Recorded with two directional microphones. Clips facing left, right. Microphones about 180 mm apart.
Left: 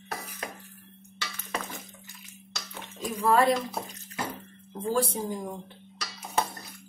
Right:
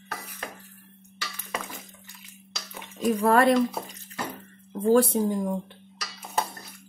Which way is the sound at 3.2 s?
60° right (ahead or behind).